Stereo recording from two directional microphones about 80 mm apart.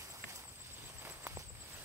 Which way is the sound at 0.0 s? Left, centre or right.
Right.